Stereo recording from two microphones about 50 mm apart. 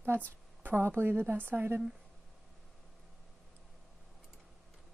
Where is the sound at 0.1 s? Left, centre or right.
Right.